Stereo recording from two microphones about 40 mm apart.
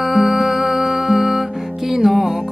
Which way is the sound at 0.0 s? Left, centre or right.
Centre.